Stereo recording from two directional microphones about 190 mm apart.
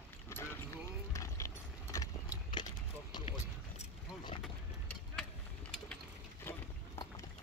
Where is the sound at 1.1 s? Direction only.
15° left (ahead or behind).